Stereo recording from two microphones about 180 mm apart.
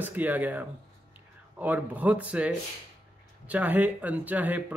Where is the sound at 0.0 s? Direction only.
10° right (ahead or behind).